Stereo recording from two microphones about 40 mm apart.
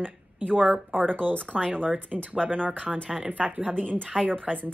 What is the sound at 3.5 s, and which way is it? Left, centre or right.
Speech, right.